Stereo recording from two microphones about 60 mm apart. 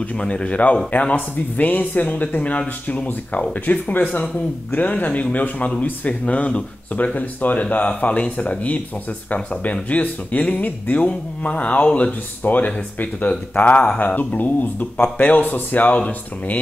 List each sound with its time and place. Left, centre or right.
0.2 s speech: centre